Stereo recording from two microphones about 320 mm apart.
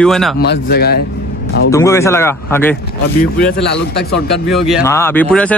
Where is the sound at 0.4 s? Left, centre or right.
Left.